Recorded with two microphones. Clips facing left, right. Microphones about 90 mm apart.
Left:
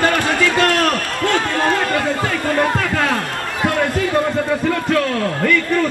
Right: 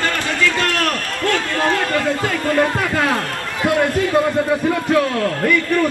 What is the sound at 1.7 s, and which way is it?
Speech, 15° left (ahead or behind).